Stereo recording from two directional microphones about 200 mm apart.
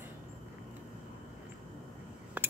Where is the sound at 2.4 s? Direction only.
10° right (ahead or behind).